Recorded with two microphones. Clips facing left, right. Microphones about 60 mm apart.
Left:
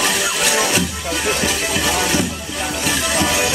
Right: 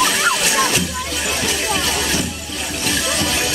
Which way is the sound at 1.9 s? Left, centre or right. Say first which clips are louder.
Left 3 dB; centre.